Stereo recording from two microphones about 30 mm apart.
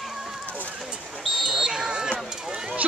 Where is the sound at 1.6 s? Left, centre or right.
Right.